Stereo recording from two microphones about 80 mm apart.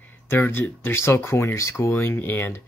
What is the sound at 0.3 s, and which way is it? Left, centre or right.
Speech, left.